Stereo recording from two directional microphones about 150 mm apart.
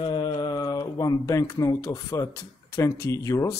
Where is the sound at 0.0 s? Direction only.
30° left (ahead or behind).